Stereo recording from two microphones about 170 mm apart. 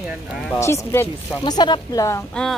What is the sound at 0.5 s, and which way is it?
Speech, 15° left (ahead or behind).